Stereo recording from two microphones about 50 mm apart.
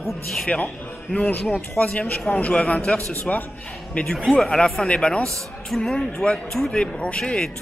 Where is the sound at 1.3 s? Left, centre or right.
Left.